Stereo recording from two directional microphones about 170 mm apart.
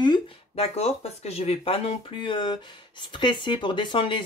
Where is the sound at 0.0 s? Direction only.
25° left (ahead or behind).